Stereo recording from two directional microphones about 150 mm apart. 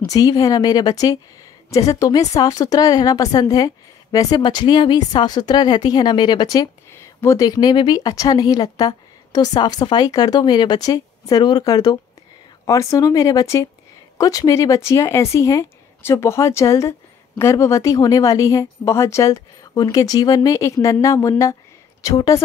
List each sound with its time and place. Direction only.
0.0 s a woman's voice: 25° left (ahead or behind)